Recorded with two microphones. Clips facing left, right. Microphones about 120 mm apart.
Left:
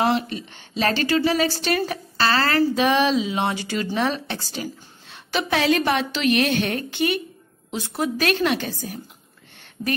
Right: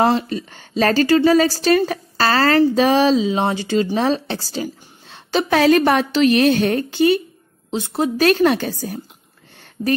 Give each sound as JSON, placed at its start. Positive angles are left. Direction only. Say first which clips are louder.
{"t": 0.1, "sound": "speech", "louder": "right 3 dB", "side_deg": -40}